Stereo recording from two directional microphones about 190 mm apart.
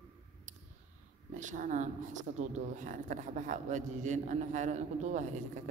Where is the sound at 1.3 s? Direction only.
40° right (ahead or behind).